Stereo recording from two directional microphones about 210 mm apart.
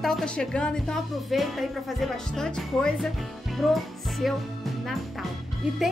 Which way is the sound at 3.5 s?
Centre (ahead or behind).